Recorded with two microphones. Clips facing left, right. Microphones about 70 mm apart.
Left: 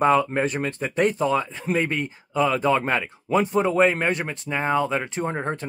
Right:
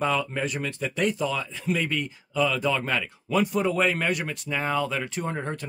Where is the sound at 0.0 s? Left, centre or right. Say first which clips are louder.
Left 7 dB; left.